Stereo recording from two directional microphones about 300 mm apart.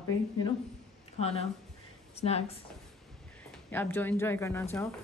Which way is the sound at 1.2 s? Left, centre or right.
Left.